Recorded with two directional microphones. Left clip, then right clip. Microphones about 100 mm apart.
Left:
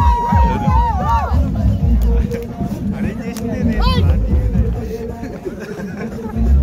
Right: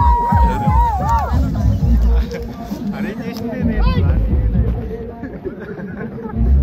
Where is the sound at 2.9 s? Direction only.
45° right (ahead or behind).